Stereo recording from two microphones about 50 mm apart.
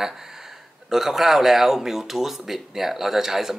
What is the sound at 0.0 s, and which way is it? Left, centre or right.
Speech, centre.